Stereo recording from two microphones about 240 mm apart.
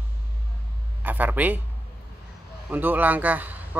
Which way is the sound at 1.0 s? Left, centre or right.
Centre.